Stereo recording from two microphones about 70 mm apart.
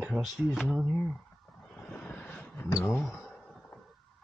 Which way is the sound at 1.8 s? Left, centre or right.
Centre.